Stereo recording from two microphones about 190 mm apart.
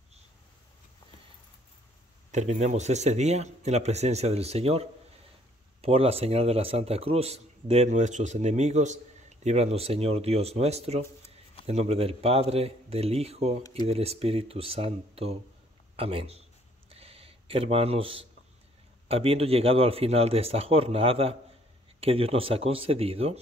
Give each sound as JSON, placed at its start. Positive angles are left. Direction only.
{"t": 2.3, "sound": "a man's voice", "side_deg": -40}
{"t": 13.6, "sound": "speech", "side_deg": 20}
{"t": 13.8, "sound": "a man's voice", "side_deg": -30}
{"t": 16.9, "sound": "a sound", "side_deg": -30}
{"t": 19.0, "sound": "a man's voice", "side_deg": -30}